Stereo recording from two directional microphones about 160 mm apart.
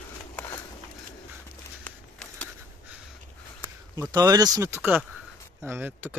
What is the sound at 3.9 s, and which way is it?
Speech, 25° right (ahead or behind).